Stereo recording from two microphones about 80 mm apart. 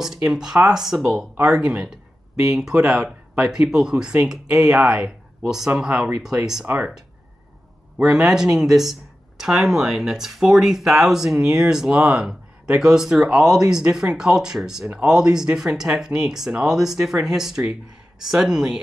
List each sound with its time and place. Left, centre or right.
0.0 s speech: centre
6.6 s speech: centre
8.1 s speech: centre